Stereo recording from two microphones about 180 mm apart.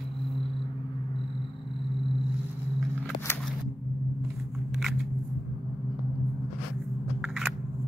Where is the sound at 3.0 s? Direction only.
15° left (ahead or behind).